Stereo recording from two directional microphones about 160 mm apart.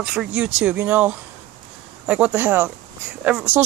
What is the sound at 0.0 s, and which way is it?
Speech, 5° right (ahead or behind).